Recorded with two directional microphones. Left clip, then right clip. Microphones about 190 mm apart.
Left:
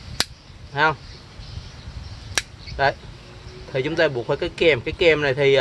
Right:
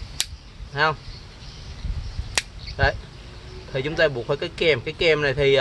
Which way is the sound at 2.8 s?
25° left (ahead or behind).